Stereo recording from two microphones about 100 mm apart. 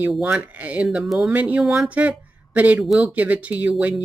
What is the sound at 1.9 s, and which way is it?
Speech, 15° right (ahead or behind).